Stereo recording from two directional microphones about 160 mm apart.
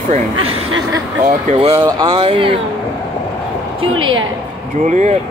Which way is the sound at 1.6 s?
35° right (ahead or behind).